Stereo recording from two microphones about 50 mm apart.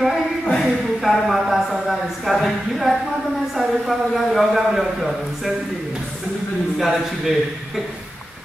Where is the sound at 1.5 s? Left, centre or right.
Centre.